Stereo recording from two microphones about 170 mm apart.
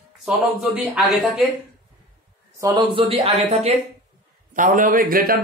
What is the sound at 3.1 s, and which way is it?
Speech, 40° right (ahead or behind).